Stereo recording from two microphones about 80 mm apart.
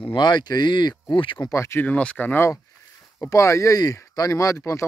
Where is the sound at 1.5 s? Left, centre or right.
Left.